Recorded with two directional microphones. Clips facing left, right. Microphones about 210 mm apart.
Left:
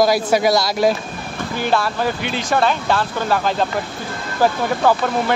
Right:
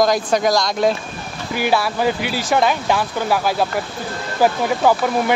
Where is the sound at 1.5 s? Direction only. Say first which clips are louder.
Right 1 dB; 10° right (ahead or behind).